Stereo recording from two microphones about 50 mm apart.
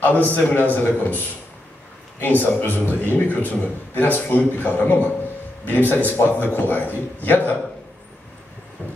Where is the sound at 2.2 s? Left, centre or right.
Left.